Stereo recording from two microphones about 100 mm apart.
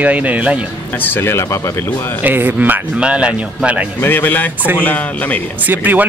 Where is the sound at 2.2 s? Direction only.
20° right (ahead or behind).